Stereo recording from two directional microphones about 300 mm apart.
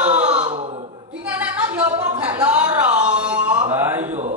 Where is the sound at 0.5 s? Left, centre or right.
Centre.